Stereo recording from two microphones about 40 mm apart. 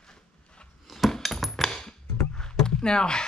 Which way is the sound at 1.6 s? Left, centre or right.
Centre.